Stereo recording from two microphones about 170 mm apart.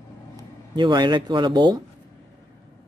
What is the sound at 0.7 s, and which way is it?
Speech, 25° right (ahead or behind).